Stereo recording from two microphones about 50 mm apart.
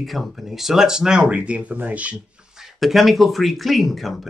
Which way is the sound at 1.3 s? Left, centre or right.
Right.